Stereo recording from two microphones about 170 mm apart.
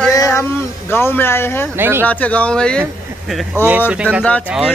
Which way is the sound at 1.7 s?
15° right (ahead or behind).